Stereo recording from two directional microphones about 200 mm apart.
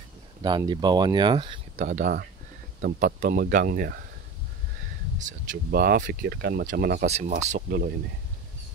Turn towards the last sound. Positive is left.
turn(degrees=-50)  # may be behind; listen again after turning